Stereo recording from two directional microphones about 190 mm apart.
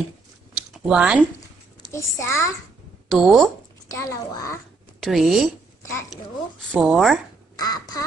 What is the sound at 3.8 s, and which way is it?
Speech, 15° left (ahead or behind).